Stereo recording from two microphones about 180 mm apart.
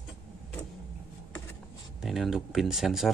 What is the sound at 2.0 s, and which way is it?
Speech, centre (ahead or behind).